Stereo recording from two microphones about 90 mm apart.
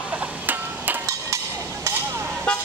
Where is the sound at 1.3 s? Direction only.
35° right (ahead or behind).